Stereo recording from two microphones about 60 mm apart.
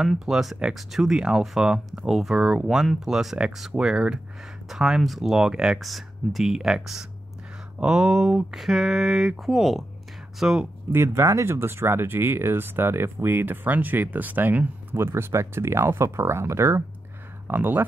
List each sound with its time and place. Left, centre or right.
0.0 s speech: centre
10.9 s speech: right
15.0 s speech: right
17.5 s speech: right